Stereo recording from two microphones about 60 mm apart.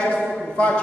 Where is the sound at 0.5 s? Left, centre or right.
Left.